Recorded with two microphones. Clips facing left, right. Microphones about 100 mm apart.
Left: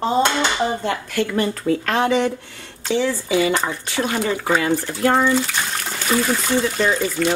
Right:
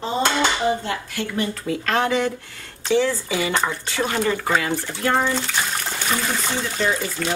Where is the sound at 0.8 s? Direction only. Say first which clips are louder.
Left 5 dB; 60° left (ahead or behind).